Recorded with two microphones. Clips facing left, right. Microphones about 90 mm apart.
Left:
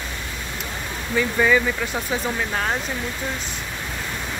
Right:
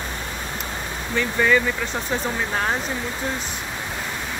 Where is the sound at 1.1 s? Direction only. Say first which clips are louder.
Left 1 dB; 5° left (ahead or behind).